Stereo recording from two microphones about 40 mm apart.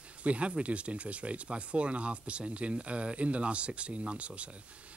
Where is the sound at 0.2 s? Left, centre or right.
Right.